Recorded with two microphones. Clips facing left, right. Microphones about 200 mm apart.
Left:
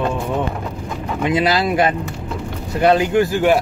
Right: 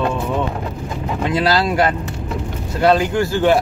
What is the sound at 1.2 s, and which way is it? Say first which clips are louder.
Speech: even; 15° left (ahead or behind).